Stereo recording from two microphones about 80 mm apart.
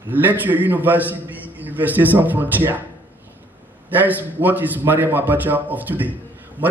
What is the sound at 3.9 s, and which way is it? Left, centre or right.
A man's voice, right.